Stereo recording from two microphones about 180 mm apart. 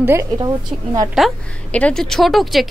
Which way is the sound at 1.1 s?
5° left (ahead or behind).